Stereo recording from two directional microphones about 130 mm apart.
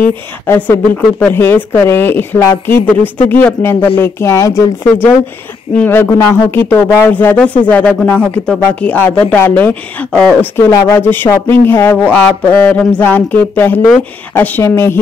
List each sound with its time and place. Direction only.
0.5 s speech: 15° left (ahead or behind)
5.8 s speech: 15° left (ahead or behind)
10.5 s speech: 20° left (ahead or behind)